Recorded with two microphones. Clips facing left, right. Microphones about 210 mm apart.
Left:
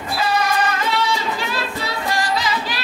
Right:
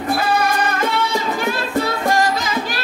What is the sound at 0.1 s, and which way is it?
Music, 50° right (ahead or behind).